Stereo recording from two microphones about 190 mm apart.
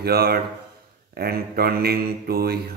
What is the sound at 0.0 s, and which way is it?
Mantra, 55° right (ahead or behind).